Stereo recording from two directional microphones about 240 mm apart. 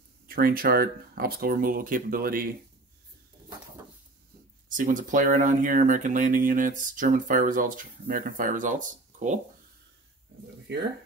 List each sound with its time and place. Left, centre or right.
0.3 s speech: right
4.6 s speech: right